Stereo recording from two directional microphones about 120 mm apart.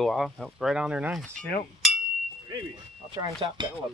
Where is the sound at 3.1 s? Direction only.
40° right (ahead or behind).